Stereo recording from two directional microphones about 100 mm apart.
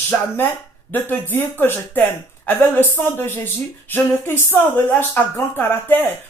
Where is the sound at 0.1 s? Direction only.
15° left (ahead or behind).